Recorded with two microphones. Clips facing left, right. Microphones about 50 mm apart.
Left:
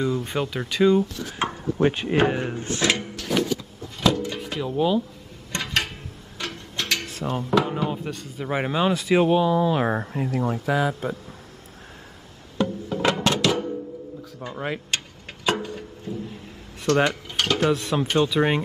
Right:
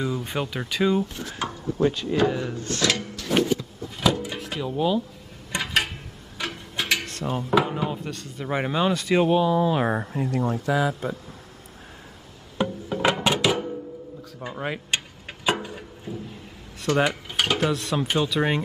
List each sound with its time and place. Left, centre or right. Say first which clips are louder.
0.0 s speech: left 3 dB; centre
1.4 s speech: left 2 dB; left
4.0 s drawer open or close: left 1 dB; centre
4.4 s speech: left 2 dB; centre
5.5 s a sound: right 1 dB; centre
7.1 s music: even; centre
7.9 s speech: left 2 dB; centre
12.6 s music: right 1 dB; centre
14.4 s speech: left 1 dB; centre
15.4 s a sound: left 1 dB; centre
16.1 s music: left 2 dB; centre
16.8 s dishes: left 2 dB; centre
17.6 s speech: left 2 dB; centre